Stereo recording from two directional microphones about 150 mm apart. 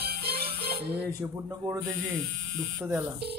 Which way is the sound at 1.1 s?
20° right (ahead or behind).